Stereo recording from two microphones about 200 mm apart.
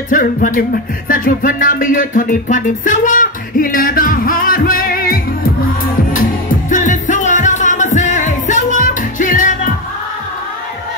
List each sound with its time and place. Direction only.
0.1 s music: 40° left (ahead or behind)
6.7 s music: 40° left (ahead or behind)